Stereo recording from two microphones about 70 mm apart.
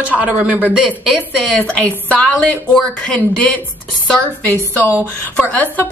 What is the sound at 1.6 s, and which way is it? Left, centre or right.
Speech, left.